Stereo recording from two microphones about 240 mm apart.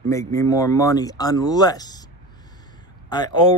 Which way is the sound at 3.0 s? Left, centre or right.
Centre.